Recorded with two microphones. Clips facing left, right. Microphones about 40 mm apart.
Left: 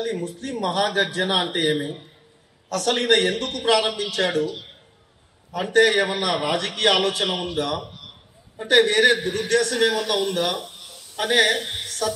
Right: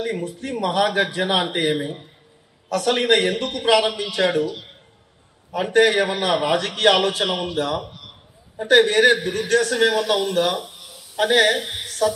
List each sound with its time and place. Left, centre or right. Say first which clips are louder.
0.0 s a man's voice: right 1 dB; centre
2.7 s a man's voice: right 2 dB; centre
5.5 s a man's voice: right 1 dB; right
6.8 s a man's voice: right 2 dB; centre
8.7 s a man's voice: right 2 dB; right
9.6 s a man's voice: right 3 dB; centre